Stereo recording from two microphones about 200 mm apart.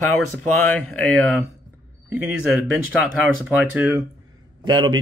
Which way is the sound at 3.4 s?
5° right (ahead or behind).